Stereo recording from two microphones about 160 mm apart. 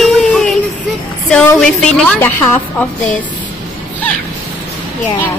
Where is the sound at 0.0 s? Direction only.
5° left (ahead or behind).